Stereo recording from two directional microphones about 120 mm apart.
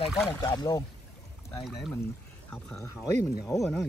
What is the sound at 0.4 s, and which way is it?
Speech, 35° left (ahead or behind).